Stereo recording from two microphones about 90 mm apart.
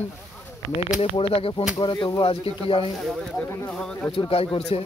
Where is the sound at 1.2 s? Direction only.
90° left.